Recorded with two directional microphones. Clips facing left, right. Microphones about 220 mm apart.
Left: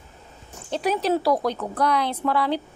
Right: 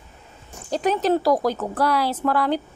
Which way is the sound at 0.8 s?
5° left (ahead or behind).